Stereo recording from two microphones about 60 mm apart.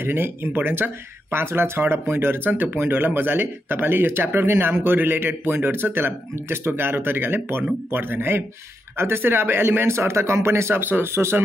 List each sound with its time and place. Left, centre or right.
0.0 s speech: right
10.8 s speech: right